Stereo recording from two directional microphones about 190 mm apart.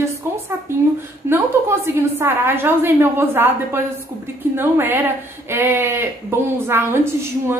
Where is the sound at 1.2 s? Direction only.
15° right (ahead or behind).